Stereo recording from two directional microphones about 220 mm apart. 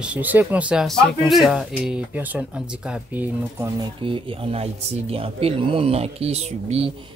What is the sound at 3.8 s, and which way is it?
Speech, 25° right (ahead or behind).